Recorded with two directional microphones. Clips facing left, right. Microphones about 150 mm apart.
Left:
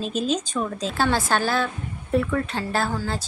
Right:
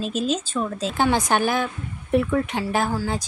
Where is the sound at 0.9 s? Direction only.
20° right (ahead or behind).